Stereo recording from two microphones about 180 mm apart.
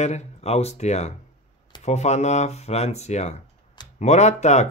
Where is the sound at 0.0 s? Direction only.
35° left (ahead or behind).